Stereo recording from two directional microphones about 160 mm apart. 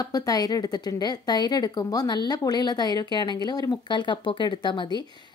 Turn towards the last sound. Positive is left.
turn(degrees=30)  # may be behind; listen again after turning